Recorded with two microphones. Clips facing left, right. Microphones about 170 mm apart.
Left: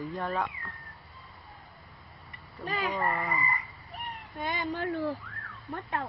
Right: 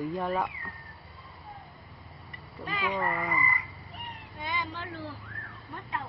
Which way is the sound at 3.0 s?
10° right (ahead or behind).